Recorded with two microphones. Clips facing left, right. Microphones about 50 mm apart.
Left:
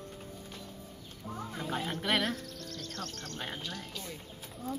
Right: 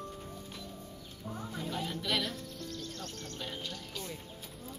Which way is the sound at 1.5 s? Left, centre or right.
Left.